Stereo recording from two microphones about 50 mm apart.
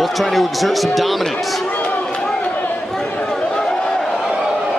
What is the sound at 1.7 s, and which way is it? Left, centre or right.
Run, left.